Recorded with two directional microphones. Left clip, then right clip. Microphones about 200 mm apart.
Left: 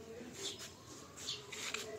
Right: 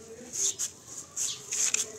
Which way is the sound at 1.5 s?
55° right (ahead or behind).